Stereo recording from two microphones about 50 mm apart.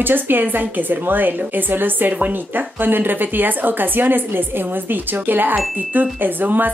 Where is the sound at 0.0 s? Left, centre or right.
Right.